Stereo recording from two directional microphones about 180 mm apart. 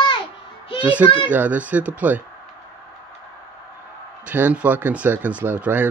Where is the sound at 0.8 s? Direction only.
10° right (ahead or behind).